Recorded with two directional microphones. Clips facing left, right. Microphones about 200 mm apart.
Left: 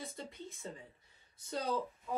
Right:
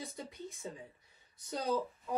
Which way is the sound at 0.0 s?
15° right (ahead or behind).